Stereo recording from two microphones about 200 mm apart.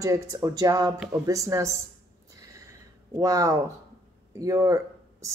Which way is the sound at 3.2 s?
15° right (ahead or behind).